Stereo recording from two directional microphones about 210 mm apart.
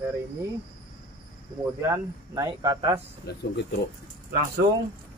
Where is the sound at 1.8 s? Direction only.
15° right (ahead or behind).